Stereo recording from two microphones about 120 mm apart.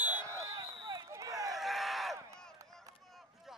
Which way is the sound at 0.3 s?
25° right (ahead or behind).